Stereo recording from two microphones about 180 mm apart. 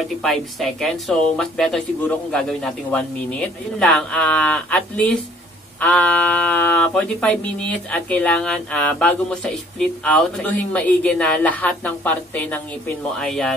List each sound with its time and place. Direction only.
0.2 s speech: centre (ahead or behind)